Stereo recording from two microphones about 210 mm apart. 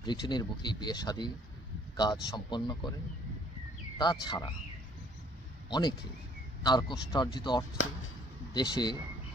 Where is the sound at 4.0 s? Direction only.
20° left (ahead or behind).